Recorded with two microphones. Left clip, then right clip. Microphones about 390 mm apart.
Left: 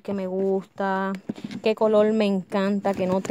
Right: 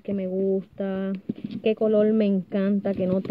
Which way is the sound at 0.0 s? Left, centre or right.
Left.